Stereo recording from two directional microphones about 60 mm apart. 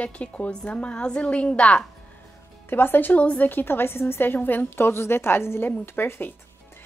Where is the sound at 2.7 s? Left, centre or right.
Left.